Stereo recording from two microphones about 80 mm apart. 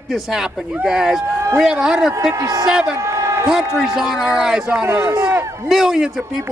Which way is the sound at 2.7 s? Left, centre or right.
Centre.